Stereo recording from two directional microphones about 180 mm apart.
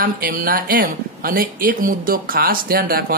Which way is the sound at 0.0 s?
50° right (ahead or behind).